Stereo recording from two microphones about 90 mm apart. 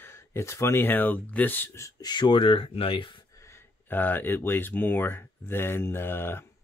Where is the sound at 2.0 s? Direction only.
55° left (ahead or behind); by 3.2 s 80° left.